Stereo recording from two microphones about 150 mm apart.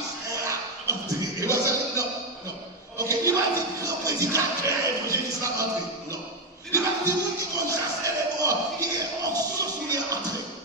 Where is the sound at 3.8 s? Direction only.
20° right (ahead or behind).